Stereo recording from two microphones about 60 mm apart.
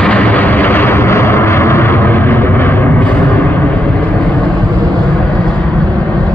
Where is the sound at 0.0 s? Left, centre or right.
Left.